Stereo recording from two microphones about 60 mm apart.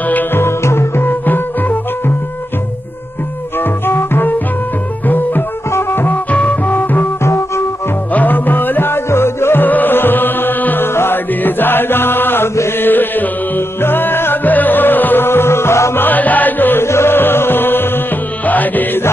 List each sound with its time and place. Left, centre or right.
0.0 s music: left
1.2 s music: left
3.5 s music: left
6.1 s music: left
7.2 s music: left
8.1 s music: left
16.0 s music: left
16.8 s music: left